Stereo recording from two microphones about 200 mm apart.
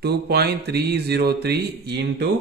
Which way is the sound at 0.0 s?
55° right (ahead or behind).